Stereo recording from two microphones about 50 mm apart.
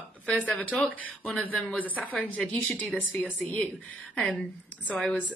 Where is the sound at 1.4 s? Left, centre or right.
Left.